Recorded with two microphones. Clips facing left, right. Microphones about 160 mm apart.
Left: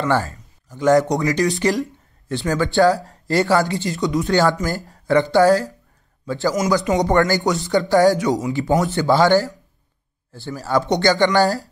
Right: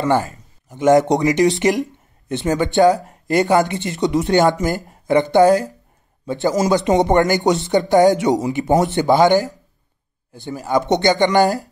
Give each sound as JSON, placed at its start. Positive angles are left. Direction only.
{"t": 0.0, "sound": "speech", "side_deg": -20}